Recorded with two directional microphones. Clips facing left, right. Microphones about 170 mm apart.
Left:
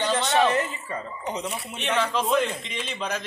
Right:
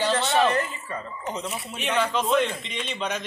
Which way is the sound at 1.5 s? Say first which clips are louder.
Even; centre (ahead or behind).